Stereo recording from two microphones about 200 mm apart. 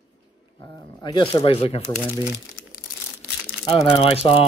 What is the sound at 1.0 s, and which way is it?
Speech, 20° left (ahead or behind).